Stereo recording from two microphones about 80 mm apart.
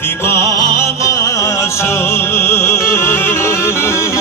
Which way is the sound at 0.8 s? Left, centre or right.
Left.